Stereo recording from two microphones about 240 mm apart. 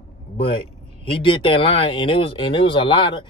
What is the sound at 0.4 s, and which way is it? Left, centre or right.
Speech, left.